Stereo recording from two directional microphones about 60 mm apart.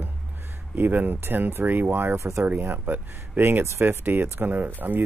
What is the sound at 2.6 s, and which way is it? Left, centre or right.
Speech, right.